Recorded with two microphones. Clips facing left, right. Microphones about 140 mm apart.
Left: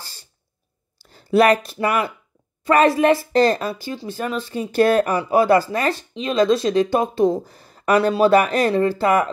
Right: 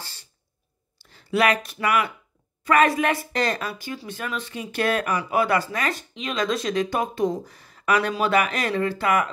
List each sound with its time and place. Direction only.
1.1 s speech: 35° left (ahead or behind)